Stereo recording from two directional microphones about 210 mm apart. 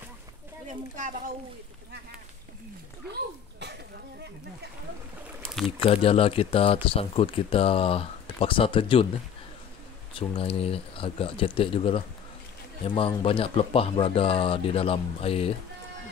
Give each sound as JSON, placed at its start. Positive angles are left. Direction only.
{"t": 5.4, "sound": "a sound", "side_deg": 0}
{"t": 5.9, "sound": "speech", "side_deg": 25}
{"t": 10.1, "sound": "speech", "side_deg": 25}